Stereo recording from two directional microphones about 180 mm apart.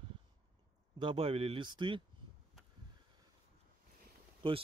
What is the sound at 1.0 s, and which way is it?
Speech, 30° right (ahead or behind).